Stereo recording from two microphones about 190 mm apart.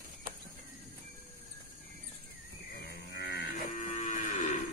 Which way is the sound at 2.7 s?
55° left (ahead or behind).